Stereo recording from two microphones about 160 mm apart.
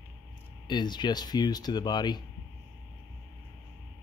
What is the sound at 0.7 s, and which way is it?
Speech, 25° left (ahead or behind).